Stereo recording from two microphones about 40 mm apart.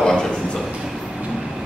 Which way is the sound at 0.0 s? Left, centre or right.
Centre.